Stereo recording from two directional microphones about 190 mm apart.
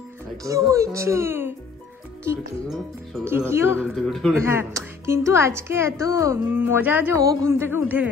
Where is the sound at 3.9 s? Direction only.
Centre (ahead or behind).